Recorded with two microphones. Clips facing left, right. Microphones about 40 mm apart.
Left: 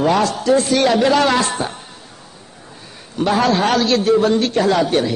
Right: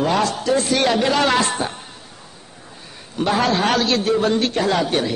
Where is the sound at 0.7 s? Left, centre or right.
Centre.